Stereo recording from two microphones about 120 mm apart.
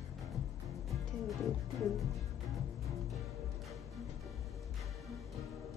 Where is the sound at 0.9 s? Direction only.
Centre (ahead or behind).